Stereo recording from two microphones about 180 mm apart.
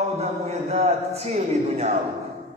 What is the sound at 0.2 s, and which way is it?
A man's voice, 35° right (ahead or behind).